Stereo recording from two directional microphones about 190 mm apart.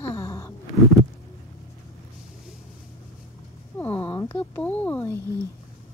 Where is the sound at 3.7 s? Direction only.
10° left (ahead or behind).